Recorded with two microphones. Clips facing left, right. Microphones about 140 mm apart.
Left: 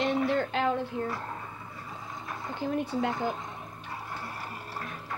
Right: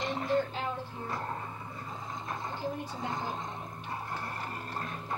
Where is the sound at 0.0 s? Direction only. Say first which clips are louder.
Left 3 dB; 70° left (ahead or behind).